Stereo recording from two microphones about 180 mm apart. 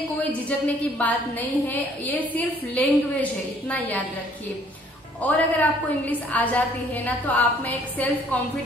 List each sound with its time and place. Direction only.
0.2 s a woman's voice: 10° left (ahead or behind)
5.2 s a woman's voice: 10° left (ahead or behind)